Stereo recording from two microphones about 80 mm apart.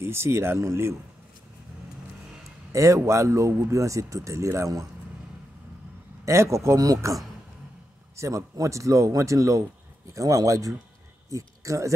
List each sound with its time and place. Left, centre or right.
0.0 s speech: right
2.7 s speech: right
6.2 s speech: right
8.2 s speech: right